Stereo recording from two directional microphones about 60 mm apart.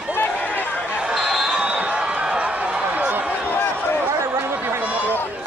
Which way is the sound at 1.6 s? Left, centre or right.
Centre.